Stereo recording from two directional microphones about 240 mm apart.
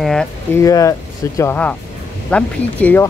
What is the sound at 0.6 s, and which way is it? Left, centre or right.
Speech, centre.